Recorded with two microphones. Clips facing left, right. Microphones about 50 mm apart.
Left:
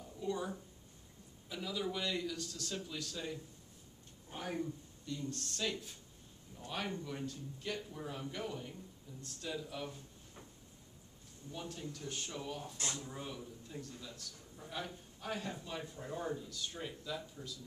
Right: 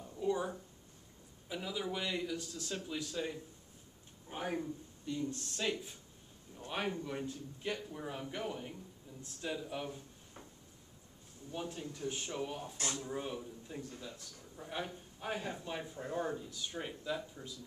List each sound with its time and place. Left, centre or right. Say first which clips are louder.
0.0 s a sound: right 4 dB; centre
1.5 s a man's voice: right 1 dB; centre
11.5 s speech: right 3 dB; centre
12.7 s speech: right 2 dB; right
13.0 s speech: right 5 dB; centre